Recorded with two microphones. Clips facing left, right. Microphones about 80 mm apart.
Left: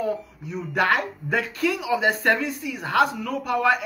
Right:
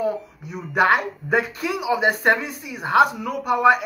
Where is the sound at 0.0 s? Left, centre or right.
Centre.